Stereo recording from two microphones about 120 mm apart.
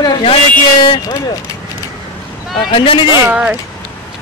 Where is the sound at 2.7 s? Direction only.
45° left (ahead or behind).